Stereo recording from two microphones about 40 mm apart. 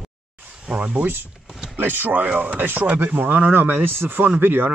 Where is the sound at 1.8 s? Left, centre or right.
Right.